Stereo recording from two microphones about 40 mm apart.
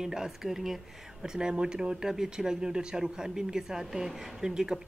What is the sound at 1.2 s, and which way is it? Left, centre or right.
Speech, right.